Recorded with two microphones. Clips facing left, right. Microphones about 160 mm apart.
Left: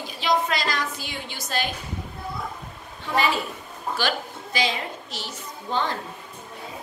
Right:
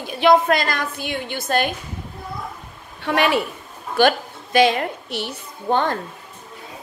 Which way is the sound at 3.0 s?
65° right (ahead or behind).